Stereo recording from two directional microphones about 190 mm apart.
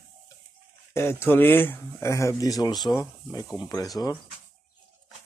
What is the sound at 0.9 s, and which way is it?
Speech, 15° left (ahead or behind).